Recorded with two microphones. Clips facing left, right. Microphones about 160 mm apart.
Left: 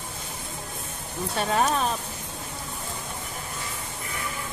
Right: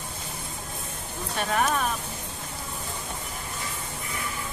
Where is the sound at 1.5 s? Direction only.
25° left (ahead or behind).